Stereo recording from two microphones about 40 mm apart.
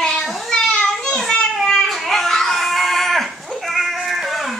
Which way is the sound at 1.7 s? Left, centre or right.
Centre.